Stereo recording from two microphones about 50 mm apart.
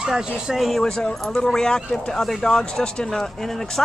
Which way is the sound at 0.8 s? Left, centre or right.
Centre.